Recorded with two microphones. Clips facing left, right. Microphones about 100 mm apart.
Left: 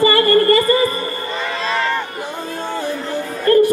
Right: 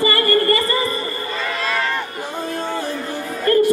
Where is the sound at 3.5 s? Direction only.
25° left (ahead or behind).